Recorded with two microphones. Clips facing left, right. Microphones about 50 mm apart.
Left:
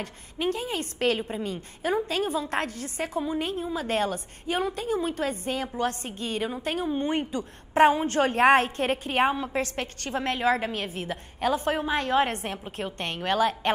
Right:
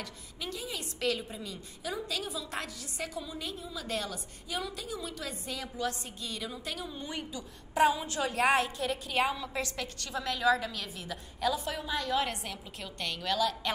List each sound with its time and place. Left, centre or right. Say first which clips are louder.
0.0 s a woman's voice: left 11 dB; left